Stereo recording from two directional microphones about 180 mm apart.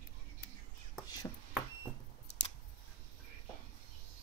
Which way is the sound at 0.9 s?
20° left (ahead or behind).